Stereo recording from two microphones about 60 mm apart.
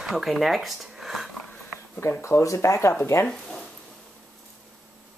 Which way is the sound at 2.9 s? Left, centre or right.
Left.